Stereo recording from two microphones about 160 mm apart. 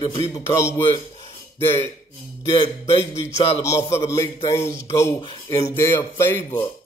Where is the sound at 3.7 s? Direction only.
15° left (ahead or behind).